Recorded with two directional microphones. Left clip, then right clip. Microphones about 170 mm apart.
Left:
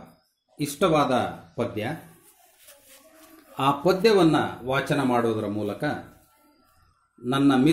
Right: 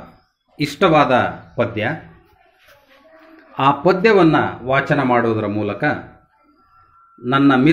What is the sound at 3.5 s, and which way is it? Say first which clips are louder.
Speech: right 7 dB; 5° left (ahead or behind).